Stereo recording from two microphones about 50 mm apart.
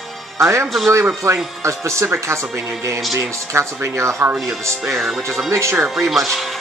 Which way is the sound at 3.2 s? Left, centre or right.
Right.